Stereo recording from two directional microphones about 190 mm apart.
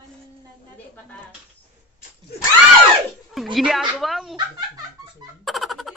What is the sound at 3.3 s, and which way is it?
Speech, centre (ahead or behind).